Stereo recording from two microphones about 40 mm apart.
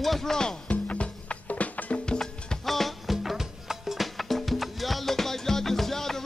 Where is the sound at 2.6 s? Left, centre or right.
Centre.